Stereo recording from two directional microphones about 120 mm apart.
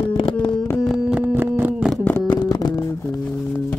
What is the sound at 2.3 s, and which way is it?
Music, 35° left (ahead or behind).